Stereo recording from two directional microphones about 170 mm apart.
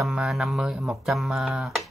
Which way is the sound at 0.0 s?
Centre (ahead or behind).